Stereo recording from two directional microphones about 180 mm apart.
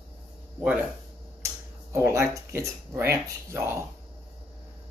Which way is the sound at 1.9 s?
15° right (ahead or behind).